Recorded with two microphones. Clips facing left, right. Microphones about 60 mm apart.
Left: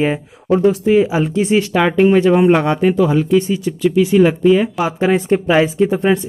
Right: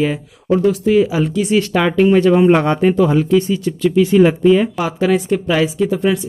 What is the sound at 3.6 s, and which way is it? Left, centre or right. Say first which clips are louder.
Speech: even; centre.